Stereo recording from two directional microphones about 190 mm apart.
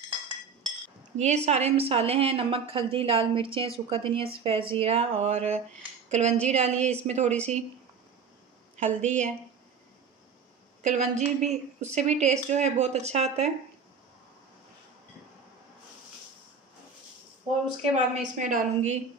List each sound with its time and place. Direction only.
1.1 s a woman's voice: 35° right (ahead or behind)
8.7 s a woman's voice: 40° right (ahead or behind)
10.8 s a woman's voice: 40° right (ahead or behind)
17.9 s a woman's voice: 40° right (ahead or behind)